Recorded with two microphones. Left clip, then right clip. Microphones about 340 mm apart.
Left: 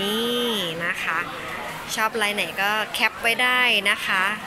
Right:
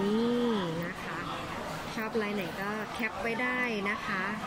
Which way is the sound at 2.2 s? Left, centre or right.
Centre.